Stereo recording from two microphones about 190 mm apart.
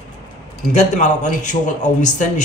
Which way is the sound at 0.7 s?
40° left (ahead or behind).